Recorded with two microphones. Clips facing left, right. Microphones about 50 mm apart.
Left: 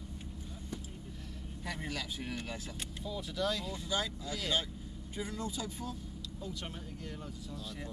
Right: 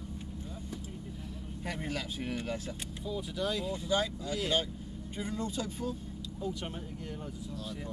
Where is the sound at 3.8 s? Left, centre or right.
Right.